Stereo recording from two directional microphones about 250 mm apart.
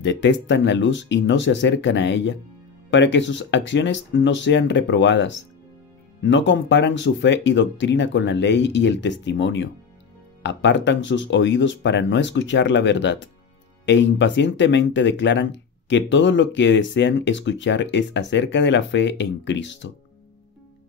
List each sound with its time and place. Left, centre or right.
0.0 s speech: left